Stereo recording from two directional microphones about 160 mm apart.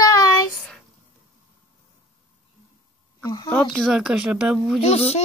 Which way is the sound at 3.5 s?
5° left (ahead or behind).